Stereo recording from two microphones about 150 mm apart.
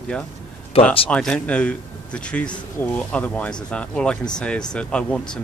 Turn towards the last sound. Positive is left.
turn(degrees=5)  # may be behind; listen again after turning